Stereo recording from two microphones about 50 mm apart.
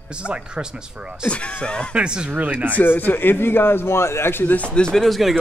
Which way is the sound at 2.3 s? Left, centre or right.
Right.